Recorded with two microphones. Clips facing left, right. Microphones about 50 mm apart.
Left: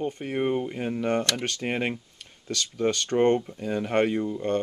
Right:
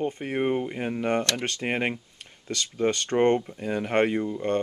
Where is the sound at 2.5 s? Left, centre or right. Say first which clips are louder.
Even; right.